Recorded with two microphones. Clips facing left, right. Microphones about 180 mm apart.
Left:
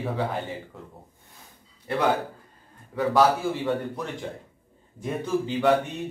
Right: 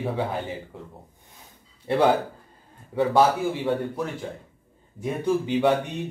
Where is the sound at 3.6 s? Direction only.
Centre (ahead or behind).